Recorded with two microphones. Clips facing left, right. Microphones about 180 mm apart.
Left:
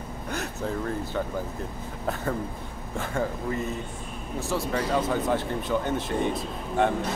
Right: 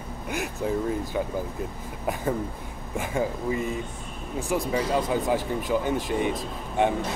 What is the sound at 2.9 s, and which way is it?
Speech, 15° right (ahead or behind).